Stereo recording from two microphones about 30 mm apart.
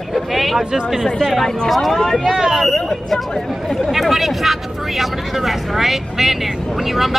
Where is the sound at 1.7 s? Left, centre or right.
Centre.